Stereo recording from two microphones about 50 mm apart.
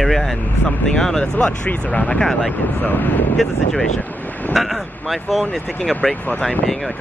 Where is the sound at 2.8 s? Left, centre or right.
Left.